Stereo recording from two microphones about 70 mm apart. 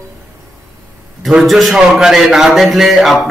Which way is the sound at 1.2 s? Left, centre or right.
Centre.